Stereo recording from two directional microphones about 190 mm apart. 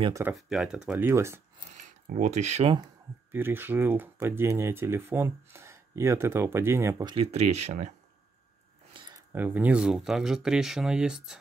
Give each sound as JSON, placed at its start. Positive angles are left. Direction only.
{"t": 0.2, "sound": "speech", "side_deg": -5}
{"t": 1.7, "sound": "speech", "side_deg": -40}
{"t": 3.3, "sound": "speech", "side_deg": -10}
{"t": 7.2, "sound": "speech", "side_deg": -35}
{"t": 8.9, "sound": "a sound", "side_deg": -25}
{"t": 9.3, "sound": "speech", "side_deg": -10}